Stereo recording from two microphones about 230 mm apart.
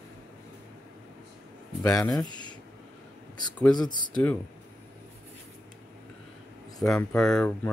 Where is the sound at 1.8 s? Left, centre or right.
Centre.